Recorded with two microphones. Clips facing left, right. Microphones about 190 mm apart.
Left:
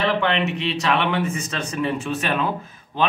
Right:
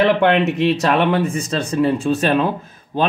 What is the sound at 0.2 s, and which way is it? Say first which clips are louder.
Speech: right 7 dB; 50° right (ahead or behind).